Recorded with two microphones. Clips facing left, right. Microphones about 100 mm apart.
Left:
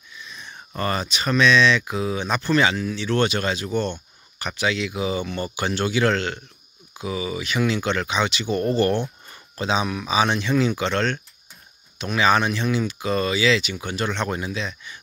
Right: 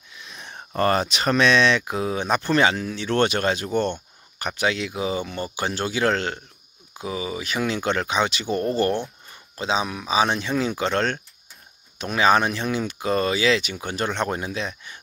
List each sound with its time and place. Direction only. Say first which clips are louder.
0.1 s a sound: even; 80° right
0.7 s speech: right 5 dB; 50° right (ahead or behind)
1.0 s speech: even; 65° right (ahead or behind); by 14.7 s 45° right (ahead or behind)